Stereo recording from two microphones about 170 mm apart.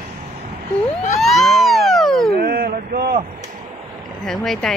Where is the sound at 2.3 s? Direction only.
65° right (ahead or behind).